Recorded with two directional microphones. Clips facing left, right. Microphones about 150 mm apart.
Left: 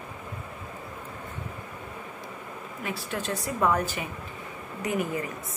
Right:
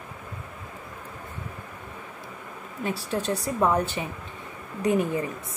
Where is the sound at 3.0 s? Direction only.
35° right (ahead or behind).